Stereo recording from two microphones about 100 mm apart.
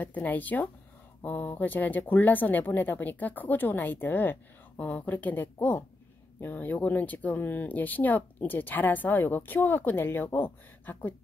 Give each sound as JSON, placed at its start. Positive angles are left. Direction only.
{"t": 0.0, "sound": "speech", "side_deg": 15}